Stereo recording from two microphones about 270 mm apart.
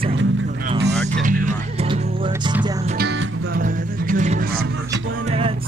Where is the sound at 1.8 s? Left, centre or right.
Centre.